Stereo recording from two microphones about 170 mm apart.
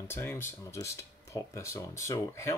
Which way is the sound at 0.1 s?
15° left (ahead or behind).